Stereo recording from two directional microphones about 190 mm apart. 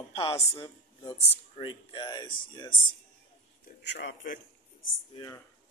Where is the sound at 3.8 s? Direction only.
65° left (ahead or behind).